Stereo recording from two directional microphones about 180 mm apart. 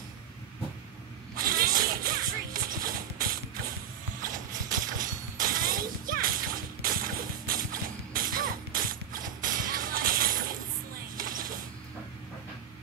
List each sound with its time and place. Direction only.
1.3 s music: 55° right (ahead or behind)
4.2 s shatter: 50° right (ahead or behind)
11.1 s a sound: 50° right (ahead or behind)